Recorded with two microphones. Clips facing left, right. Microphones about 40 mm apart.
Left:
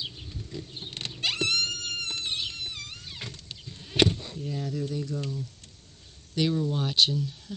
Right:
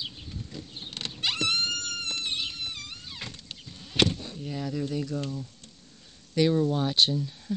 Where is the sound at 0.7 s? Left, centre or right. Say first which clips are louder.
Even; centre.